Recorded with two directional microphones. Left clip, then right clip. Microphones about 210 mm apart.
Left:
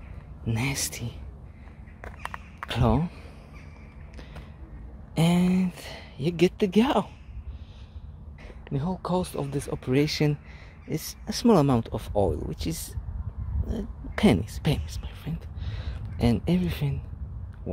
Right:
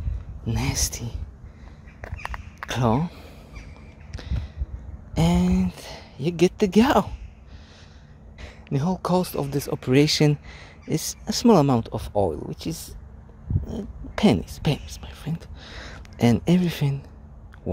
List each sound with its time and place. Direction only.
0.5 s speech: 5° right (ahead or behind)
2.0 s a sound: 10° right (ahead or behind)
5.1 s speech: 5° right (ahead or behind)
8.4 s speech: 30° right (ahead or behind)